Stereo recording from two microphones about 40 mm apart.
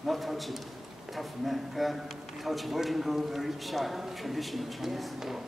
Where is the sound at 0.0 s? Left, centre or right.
Centre.